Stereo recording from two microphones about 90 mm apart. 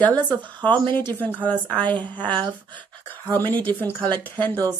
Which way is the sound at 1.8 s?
60° right (ahead or behind).